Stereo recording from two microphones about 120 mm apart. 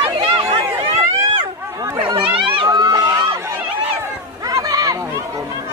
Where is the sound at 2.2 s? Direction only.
45° right (ahead or behind); by 3.5 s 30° right (ahead or behind).